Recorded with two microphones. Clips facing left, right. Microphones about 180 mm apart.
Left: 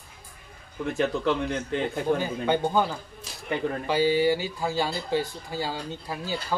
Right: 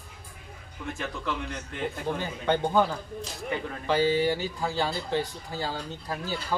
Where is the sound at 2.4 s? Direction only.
10° left (ahead or behind).